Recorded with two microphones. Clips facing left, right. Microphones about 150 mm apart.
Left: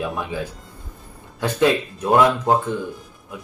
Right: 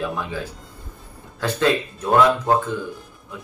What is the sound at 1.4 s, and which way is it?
Speech, 15° left (ahead or behind).